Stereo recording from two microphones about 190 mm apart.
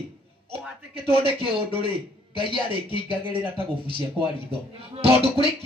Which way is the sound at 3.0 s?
25° right (ahead or behind).